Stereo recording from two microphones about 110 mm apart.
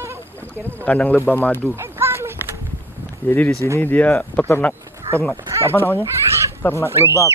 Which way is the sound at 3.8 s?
15° left (ahead or behind).